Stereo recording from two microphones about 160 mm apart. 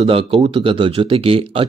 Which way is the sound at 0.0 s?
35° right (ahead or behind).